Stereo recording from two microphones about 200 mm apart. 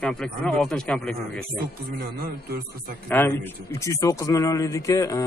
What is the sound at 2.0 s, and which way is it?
Speech, 45° right (ahead or behind).